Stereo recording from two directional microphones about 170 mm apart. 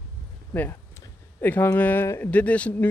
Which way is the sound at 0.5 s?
10° left (ahead or behind).